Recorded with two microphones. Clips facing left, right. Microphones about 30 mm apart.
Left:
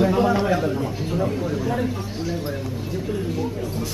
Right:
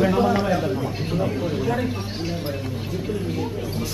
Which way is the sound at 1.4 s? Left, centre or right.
Right.